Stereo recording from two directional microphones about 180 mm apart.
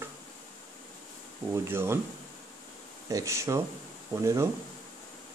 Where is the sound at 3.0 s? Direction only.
20° right (ahead or behind).